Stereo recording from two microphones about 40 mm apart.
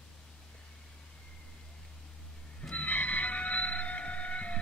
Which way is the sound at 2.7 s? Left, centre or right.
Left.